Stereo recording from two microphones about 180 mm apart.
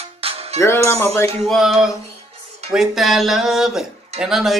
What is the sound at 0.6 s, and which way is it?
Speech, 15° left (ahead or behind).